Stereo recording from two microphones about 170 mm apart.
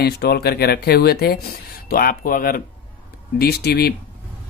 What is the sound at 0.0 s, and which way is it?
Speech, 70° left (ahead or behind).